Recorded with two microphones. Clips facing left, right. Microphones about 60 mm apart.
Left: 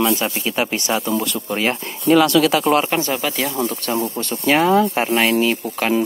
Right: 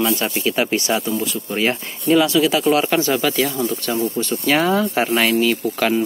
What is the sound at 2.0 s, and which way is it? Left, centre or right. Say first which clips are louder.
Speech: left 2 dB; left.